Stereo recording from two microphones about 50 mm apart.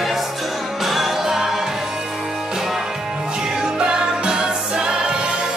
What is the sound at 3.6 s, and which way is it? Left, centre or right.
Music, centre.